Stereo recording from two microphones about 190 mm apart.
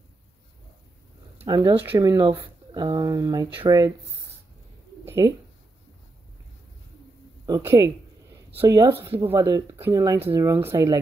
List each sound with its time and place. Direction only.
1.4 s speech: 25° right (ahead or behind)
5.0 s a sound: 15° right (ahead or behind)
7.4 s speech: 20° right (ahead or behind)